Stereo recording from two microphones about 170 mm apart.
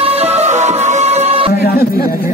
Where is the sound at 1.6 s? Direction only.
60° left (ahead or behind).